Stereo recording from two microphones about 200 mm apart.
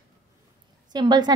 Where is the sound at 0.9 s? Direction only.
20° right (ahead or behind).